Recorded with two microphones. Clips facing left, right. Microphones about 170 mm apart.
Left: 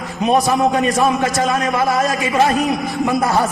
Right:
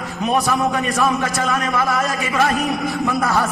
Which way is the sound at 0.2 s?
20° left (ahead or behind).